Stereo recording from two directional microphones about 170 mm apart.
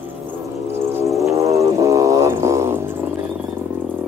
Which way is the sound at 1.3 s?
20° right (ahead or behind).